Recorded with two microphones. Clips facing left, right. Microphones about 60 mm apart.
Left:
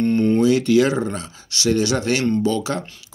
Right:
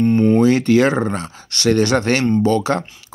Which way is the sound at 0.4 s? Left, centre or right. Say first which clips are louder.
Right 2 dB; right.